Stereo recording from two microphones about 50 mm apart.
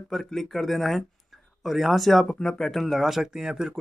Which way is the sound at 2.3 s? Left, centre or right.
Centre.